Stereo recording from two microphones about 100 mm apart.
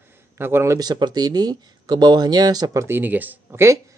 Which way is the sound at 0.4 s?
25° right (ahead or behind).